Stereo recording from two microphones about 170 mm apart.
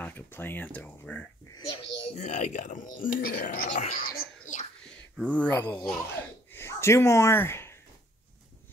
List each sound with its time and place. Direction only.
0.0 s speech: 10° left (ahead or behind)
1.7 s a child's voice: 45° left (ahead or behind)
4.1 s a sound: 50° left (ahead or behind)
5.2 s speech: 10° left (ahead or behind)